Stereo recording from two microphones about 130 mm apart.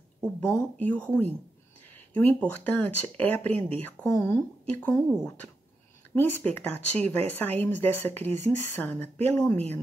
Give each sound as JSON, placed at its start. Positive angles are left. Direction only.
{"t": 0.4, "sound": "speech", "side_deg": 20}
{"t": 4.0, "sound": "speech", "side_deg": 20}
{"t": 6.1, "sound": "speech", "side_deg": 15}